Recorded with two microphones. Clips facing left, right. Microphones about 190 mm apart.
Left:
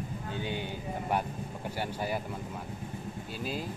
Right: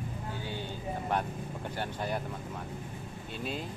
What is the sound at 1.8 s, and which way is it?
Speech, 5° left (ahead or behind).